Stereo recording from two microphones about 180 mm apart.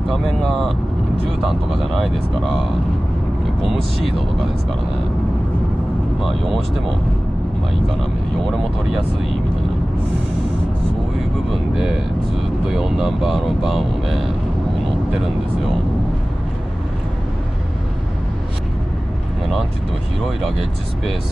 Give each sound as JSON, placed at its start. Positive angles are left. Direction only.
{"t": 0.2, "sound": "speech", "side_deg": 0}
{"t": 11.7, "sound": "speech", "side_deg": 0}